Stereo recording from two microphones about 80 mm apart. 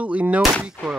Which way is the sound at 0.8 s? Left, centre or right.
Left.